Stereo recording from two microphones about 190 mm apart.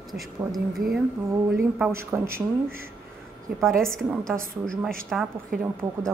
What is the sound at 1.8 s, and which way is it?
Speech, 15° right (ahead or behind).